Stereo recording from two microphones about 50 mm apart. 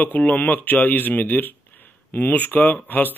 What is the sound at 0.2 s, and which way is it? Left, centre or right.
Speech, left.